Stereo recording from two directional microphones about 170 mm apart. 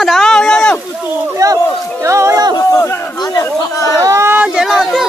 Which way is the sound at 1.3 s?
20° right (ahead or behind).